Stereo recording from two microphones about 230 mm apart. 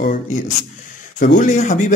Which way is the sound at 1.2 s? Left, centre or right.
Left.